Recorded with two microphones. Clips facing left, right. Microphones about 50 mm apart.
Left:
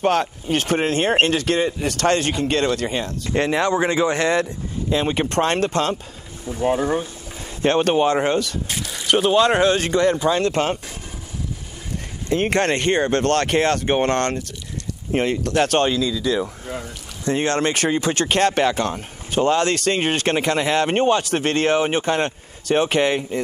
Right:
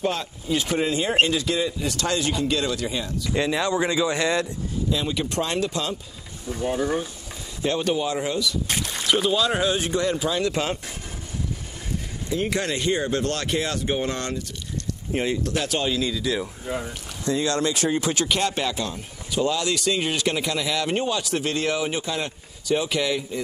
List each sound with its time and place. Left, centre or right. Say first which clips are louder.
0.0 s speech: left 7 dB; left
6.6 s speech: left 5 dB; left
7.6 s speech: left 7 dB; left
12.3 s speech: left 6 dB; left
17.3 s speech: left 3 dB; left